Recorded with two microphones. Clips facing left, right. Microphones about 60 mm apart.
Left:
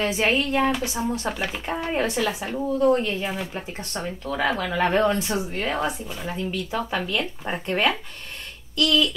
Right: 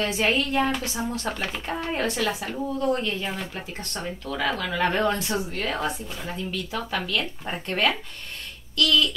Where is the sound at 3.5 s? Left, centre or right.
Centre.